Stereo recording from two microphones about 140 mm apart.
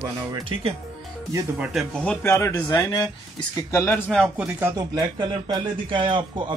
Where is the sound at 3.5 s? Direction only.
20° left (ahead or behind).